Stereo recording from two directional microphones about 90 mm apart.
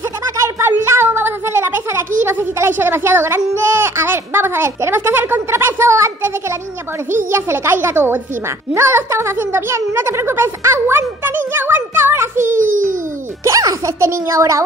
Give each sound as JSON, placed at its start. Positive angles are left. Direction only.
{"t": 0.4, "sound": "a child's voice", "side_deg": -30}
{"t": 13.4, "sound": "speech", "side_deg": -35}